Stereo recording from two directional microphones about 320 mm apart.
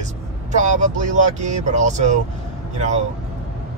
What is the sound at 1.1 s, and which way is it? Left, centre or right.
Speech, right.